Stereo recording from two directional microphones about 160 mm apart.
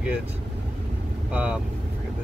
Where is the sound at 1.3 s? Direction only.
10° right (ahead or behind).